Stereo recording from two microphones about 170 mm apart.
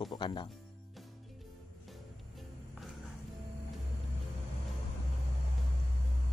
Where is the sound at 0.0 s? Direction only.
25° left (ahead or behind).